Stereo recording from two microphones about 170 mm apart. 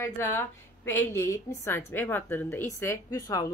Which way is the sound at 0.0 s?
15° left (ahead or behind).